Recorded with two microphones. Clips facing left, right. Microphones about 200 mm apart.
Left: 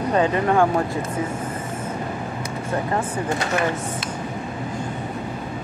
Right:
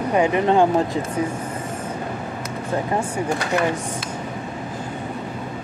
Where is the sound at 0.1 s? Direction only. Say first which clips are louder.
Right 2 dB; 10° right (ahead or behind).